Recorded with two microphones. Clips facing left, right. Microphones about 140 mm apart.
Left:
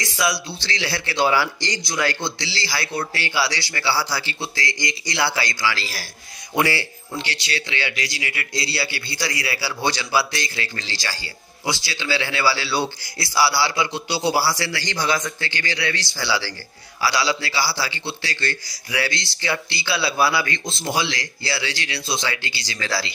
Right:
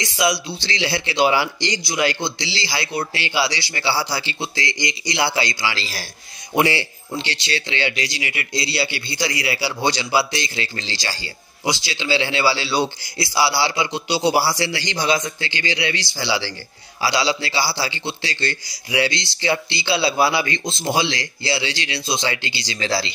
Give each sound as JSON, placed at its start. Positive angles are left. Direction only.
{"t": 0.0, "sound": "a man's voice", "side_deg": -20}